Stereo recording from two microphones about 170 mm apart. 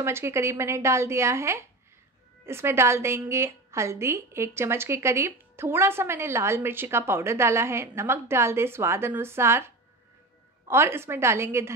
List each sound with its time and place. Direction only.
0.0 s a woman's voice: 15° right (ahead or behind)
10.7 s a woman's voice: 15° right (ahead or behind)